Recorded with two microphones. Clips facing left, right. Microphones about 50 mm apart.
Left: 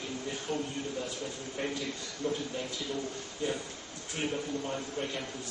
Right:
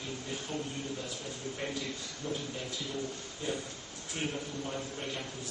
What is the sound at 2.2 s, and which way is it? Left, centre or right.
Speech, left.